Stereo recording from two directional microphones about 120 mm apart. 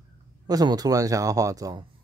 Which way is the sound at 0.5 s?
30° right (ahead or behind).